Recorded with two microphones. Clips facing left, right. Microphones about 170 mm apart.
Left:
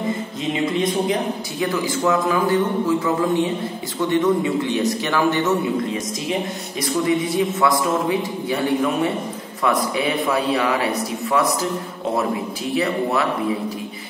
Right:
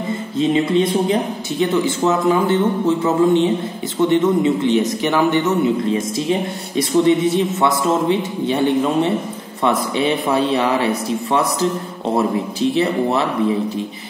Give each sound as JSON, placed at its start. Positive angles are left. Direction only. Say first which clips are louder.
{"t": 0.4, "sound": "a man's voice", "louder": "right 7 dB", "side_deg": -30}
{"t": 6.8, "sound": "a man's voice", "louder": "right 6 dB", "side_deg": -25}